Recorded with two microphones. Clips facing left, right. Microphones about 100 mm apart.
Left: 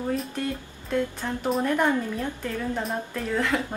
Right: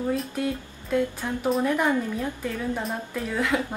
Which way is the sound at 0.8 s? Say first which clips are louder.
Right 2 dB; centre (ahead or behind).